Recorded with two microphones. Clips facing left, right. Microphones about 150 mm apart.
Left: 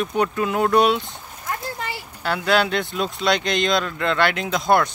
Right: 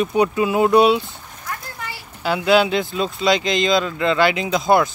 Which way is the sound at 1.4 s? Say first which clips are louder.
Left 3 dB; 25° left (ahead or behind).